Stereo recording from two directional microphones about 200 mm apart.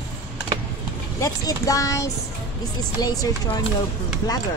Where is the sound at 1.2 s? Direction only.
20° left (ahead or behind).